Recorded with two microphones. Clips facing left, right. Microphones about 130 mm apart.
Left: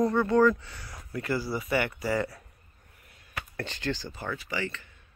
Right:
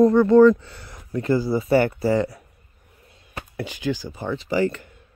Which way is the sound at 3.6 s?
10° right (ahead or behind).